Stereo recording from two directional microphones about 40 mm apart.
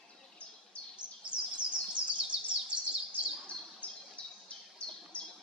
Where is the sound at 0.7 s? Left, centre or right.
Left.